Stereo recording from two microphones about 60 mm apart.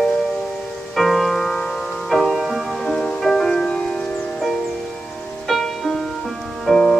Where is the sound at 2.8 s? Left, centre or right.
Centre.